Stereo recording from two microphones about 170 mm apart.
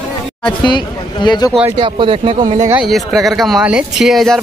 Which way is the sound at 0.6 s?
25° left (ahead or behind).